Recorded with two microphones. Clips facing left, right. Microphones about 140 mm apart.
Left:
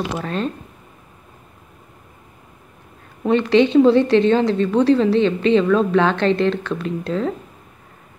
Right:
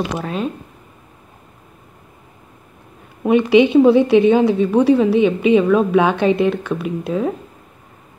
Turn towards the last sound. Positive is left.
turn(degrees=-10)  # may be behind; listen again after turning